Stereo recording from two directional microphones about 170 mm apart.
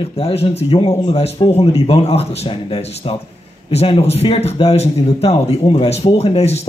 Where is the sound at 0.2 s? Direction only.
35° left (ahead or behind).